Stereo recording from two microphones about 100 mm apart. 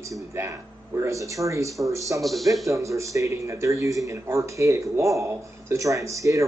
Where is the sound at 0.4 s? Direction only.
30° right (ahead or behind).